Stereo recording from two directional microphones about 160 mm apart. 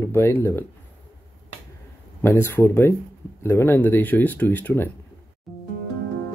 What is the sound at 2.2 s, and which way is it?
Speech, 15° left (ahead or behind).